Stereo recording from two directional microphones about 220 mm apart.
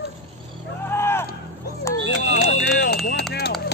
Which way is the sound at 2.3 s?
50° left (ahead or behind).